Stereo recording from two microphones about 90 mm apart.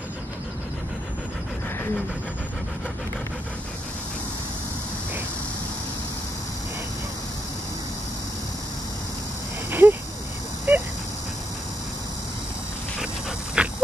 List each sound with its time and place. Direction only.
9.7 s a sound: 25° right (ahead or behind)
10.7 s dog: 20° right (ahead or behind)
13.6 s dog: 15° right (ahead or behind)